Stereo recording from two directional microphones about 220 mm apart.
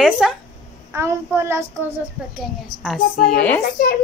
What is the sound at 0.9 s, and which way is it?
Speech, 10° right (ahead or behind).